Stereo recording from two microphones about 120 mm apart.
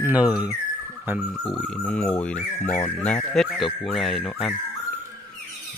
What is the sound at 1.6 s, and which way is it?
Speech, 5° left (ahead or behind).